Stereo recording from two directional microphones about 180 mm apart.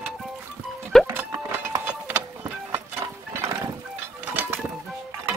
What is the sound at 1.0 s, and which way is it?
Music, 10° right (ahead or behind).